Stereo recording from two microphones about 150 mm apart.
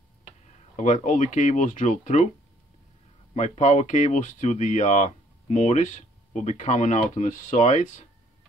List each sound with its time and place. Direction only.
0.7 s speech: 55° left (ahead or behind)
3.3 s speech: 50° left (ahead or behind)